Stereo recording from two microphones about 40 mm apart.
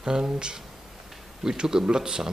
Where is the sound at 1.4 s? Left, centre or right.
Centre.